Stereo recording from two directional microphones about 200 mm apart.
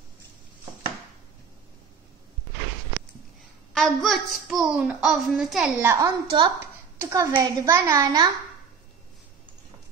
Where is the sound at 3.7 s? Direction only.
5° left (ahead or behind); by 8.3 s 20° right (ahead or behind).